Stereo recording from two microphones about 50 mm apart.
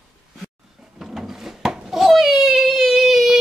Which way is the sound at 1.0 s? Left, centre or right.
Centre.